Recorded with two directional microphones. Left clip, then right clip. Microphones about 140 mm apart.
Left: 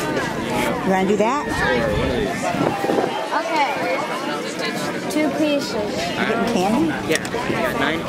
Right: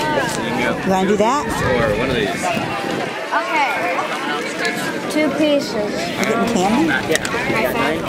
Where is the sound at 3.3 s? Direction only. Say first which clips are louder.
Right 4 dB; 20° right (ahead or behind).